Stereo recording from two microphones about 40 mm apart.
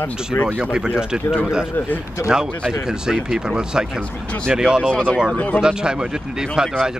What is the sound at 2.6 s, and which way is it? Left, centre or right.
Speech, centre.